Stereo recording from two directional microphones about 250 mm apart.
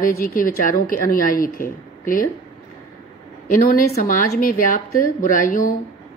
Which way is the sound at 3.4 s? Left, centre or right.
Left.